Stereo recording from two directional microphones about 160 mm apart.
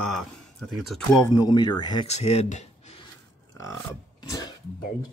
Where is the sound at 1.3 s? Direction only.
25° left (ahead or behind).